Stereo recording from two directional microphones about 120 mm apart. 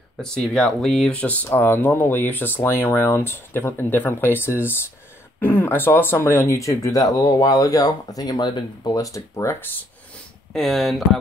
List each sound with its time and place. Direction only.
0.2 s speech: 5° left (ahead or behind)
1.1 s speech: 10° left (ahead or behind)
10.5 s speech: centre (ahead or behind)